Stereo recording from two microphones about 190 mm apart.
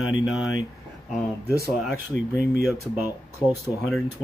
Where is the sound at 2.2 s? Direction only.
45° right (ahead or behind).